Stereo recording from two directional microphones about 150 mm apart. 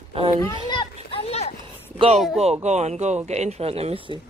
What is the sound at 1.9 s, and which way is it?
Speech, 40° right (ahead or behind).